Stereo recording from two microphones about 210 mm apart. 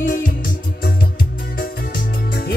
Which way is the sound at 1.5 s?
45° left (ahead or behind).